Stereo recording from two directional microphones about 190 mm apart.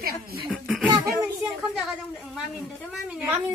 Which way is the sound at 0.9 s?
20° right (ahead or behind).